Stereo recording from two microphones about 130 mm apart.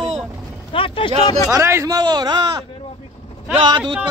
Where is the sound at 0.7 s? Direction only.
40° left (ahead or behind).